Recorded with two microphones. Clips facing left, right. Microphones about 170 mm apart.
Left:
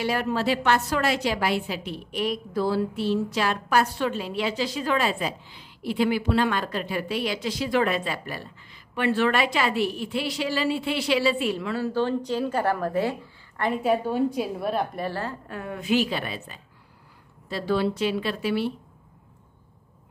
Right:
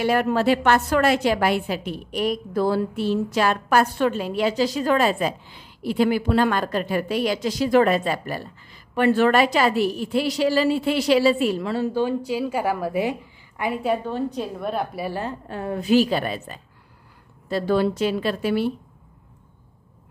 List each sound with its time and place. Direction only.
0.0 s a woman's voice: 55° right (ahead or behind)
11.9 s a woman's voice: 10° right (ahead or behind)
13.8 s a woman's voice: 5° left (ahead or behind); by 15.3 s 15° right (ahead or behind)
15.4 s a woman's voice: 30° right (ahead or behind)